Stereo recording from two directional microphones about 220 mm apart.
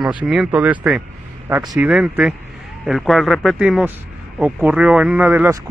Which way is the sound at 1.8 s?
Centre (ahead or behind).